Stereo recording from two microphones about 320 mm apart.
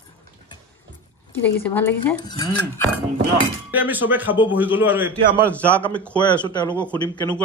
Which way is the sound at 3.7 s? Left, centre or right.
Centre.